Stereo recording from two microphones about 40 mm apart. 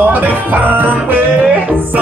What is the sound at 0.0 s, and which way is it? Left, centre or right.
Music, right.